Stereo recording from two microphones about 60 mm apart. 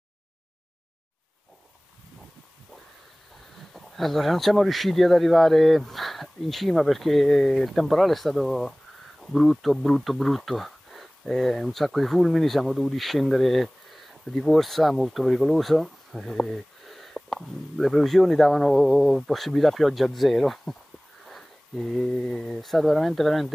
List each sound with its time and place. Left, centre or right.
3.5 s speech: centre